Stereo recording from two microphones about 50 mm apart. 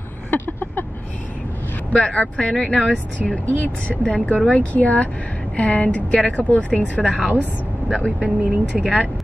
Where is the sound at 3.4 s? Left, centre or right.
Left.